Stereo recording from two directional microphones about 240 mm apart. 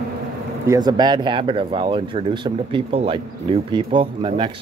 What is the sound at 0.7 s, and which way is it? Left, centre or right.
Speech, centre.